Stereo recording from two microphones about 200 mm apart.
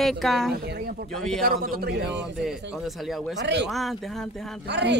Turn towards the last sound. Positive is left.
turn(degrees=-60)  # may be behind; listen again after turning